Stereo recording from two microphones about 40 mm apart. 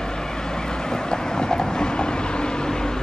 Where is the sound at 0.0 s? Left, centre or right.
Centre.